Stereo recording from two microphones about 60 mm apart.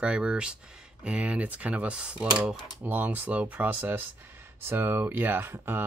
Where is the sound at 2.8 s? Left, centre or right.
Right.